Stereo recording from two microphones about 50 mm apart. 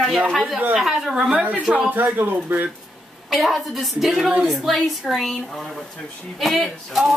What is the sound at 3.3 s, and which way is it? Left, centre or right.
Speech, centre.